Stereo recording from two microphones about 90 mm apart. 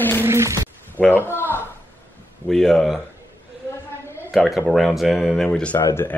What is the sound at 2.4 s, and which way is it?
Speech, 5° left (ahead or behind).